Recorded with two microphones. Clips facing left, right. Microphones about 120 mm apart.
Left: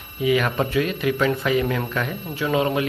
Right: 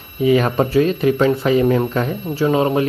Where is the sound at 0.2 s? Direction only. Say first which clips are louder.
Right 5 dB; 35° right (ahead or behind).